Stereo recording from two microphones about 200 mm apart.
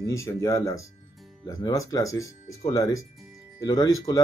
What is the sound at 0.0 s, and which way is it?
Speech, 15° left (ahead or behind).